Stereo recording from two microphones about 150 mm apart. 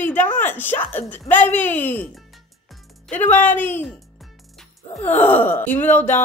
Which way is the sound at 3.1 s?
15° left (ahead or behind).